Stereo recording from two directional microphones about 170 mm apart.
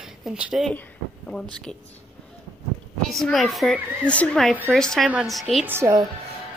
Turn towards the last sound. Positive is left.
turn(degrees=-15)  # may be behind; listen again after turning